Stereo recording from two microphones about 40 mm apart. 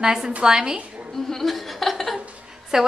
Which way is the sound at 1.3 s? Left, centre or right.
Centre.